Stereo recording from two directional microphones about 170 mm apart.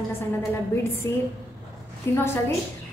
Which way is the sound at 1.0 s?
15° left (ahead or behind).